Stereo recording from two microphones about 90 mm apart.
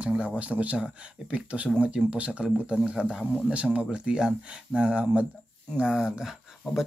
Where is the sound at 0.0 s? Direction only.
10° right (ahead or behind).